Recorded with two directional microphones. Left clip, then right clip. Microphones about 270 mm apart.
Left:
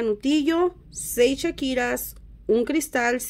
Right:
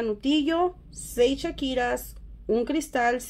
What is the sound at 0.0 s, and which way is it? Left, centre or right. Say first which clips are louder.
Speech: left 3 dB; left.